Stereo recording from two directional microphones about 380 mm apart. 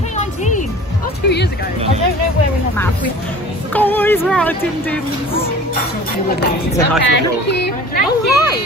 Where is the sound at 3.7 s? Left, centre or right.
Centre.